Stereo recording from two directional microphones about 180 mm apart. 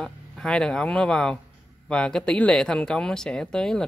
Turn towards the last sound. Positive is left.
turn(degrees=5)  # may be behind; listen again after turning